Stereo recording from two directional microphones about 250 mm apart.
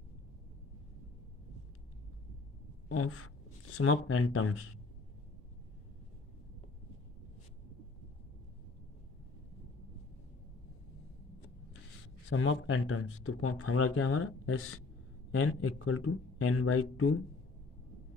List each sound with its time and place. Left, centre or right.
2.9 s speech: left
12.3 s speech: left